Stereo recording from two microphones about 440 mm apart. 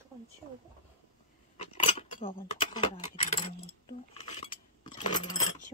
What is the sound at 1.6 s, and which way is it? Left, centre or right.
Speech, centre.